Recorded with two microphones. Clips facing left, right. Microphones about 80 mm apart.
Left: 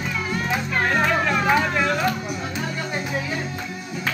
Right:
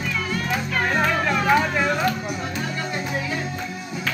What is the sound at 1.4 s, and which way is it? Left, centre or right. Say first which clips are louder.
Vehicle: right 2 dB; centre.